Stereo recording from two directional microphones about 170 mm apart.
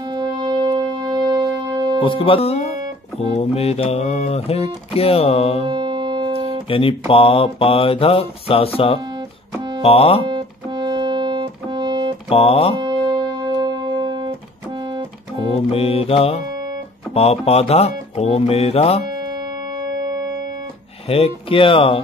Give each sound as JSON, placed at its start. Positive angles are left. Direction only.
{"t": 0.1, "sound": "music", "side_deg": -25}
{"t": 2.0, "sound": "speech", "side_deg": 30}
{"t": 3.2, "sound": "mantra", "side_deg": 35}
{"t": 5.7, "sound": "music", "side_deg": -25}
{"t": 6.7, "sound": "mantra", "side_deg": 30}
{"t": 10.2, "sound": "music", "side_deg": -25}
{"t": 12.3, "sound": "mantra", "side_deg": 35}
{"t": 12.7, "sound": "music", "side_deg": -30}
{"t": 15.7, "sound": "mantra", "side_deg": 35}
{"t": 19.8, "sound": "music", "side_deg": -25}
{"t": 21.1, "sound": "mantra", "side_deg": 30}